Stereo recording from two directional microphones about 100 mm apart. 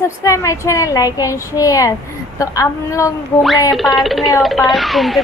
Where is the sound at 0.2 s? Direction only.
30° left (ahead or behind).